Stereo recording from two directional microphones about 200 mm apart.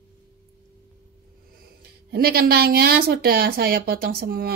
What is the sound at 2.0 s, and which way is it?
Speech, 50° right (ahead or behind).